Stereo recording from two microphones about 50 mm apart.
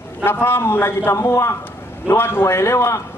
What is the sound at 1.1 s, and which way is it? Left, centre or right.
Speech, left.